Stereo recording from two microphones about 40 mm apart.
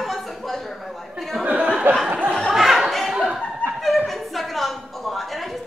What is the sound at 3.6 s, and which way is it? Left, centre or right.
Chuckle, left.